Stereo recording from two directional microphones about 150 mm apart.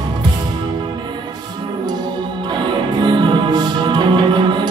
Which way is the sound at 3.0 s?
30° right (ahead or behind).